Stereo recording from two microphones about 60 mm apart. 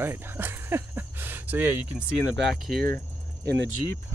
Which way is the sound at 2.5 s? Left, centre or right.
Centre.